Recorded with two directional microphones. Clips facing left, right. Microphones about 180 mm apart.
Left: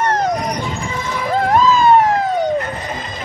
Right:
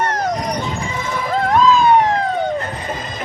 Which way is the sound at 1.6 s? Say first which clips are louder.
Even; 5° left (ahead or behind).